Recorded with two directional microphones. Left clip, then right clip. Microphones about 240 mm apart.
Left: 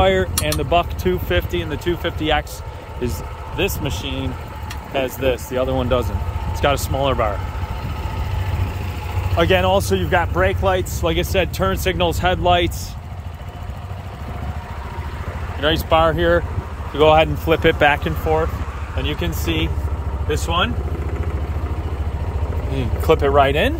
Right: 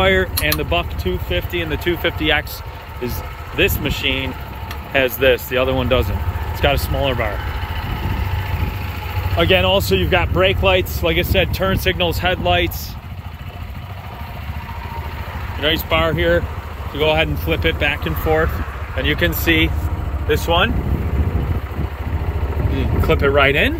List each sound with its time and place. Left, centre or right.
0.0 s speech: centre
1.0 s speech: left
1.5 s speech: centre
3.5 s speech: centre
9.4 s speech: centre
15.6 s speech: centre
19.0 s speech: centre
22.8 s speech: centre